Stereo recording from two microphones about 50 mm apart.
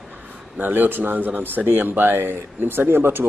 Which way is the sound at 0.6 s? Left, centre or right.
Right.